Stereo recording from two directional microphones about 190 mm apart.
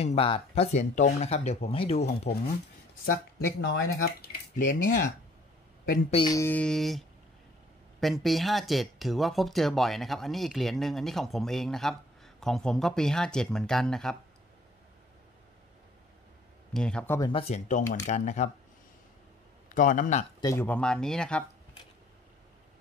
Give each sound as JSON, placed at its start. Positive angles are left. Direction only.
{"t": 0.0, "sound": "speech", "side_deg": 30}
{"t": 3.1, "sound": "speech", "side_deg": 55}
{"t": 6.0, "sound": "speech", "side_deg": 30}
{"t": 6.3, "sound": "speech", "side_deg": 10}
{"t": 16.7, "sound": "speech", "side_deg": 5}
{"t": 17.3, "sound": "speech", "side_deg": 30}
{"t": 19.7, "sound": "speech", "side_deg": 45}
{"t": 20.3, "sound": "speech", "side_deg": 15}